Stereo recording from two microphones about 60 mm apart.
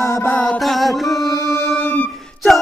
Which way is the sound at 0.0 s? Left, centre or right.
Left.